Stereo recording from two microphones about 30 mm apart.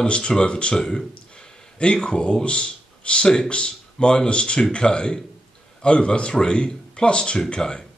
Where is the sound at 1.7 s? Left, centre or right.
Left.